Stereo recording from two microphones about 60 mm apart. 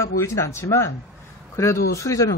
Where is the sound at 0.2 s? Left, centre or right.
Left.